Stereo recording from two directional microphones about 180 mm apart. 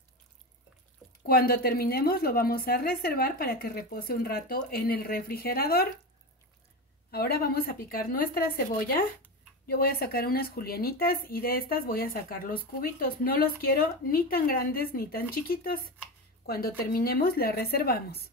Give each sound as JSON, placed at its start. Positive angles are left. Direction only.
{"t": 1.2, "sound": "speech", "side_deg": 55}
{"t": 7.1, "sound": "speech", "side_deg": 60}